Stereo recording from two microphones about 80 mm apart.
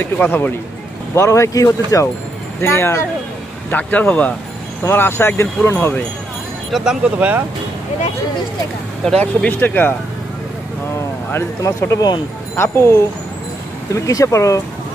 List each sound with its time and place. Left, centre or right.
0.0 s speech: left
1.1 s speech: left
2.6 s speech: left
3.7 s speech: left
4.8 s speech: left
6.7 s speech: centre
9.2 s speech: left
11.3 s speech: left